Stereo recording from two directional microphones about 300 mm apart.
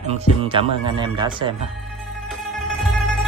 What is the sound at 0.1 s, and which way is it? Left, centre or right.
Speech, centre.